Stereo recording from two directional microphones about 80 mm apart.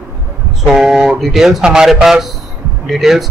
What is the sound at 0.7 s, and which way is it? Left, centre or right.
Speech, centre.